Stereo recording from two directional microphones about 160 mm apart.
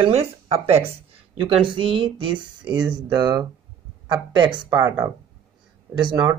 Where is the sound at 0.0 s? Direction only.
40° right (ahead or behind).